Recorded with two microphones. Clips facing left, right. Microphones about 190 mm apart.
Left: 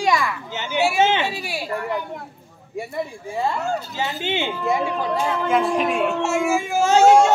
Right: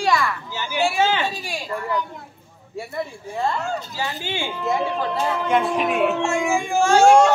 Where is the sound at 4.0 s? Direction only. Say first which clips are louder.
Left 3 dB; 20° left (ahead or behind).